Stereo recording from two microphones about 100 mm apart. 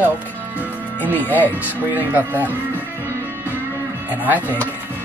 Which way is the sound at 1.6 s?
20° right (ahead or behind).